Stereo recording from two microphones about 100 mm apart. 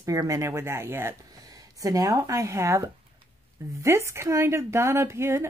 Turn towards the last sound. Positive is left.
turn(degrees=-25)  # may be behind; listen again after turning